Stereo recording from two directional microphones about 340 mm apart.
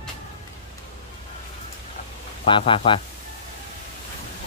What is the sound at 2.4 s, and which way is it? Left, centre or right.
Speech, centre.